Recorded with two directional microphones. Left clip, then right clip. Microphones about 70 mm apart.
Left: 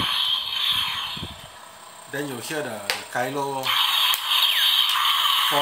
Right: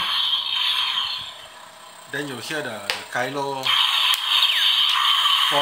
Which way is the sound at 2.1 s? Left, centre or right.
Right.